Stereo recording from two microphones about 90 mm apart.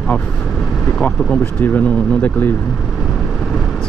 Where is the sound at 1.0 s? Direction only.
15° left (ahead or behind).